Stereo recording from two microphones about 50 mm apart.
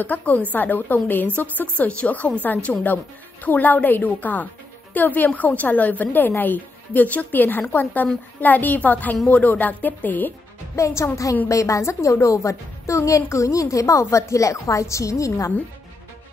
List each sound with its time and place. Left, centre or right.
0.0 s a woman's voice: left
10.8 s a woman's voice: left